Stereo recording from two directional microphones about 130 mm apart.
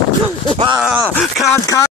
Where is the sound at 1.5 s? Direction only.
25° left (ahead or behind).